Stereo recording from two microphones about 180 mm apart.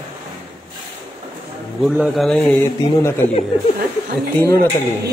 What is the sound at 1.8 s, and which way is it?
A man's voice, centre (ahead or behind).